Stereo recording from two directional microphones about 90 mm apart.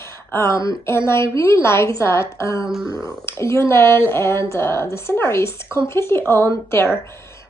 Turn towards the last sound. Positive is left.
turn(degrees=30)  # may be behind; listen again after turning